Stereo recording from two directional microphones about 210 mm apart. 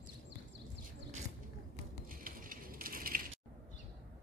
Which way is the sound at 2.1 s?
40° right (ahead or behind).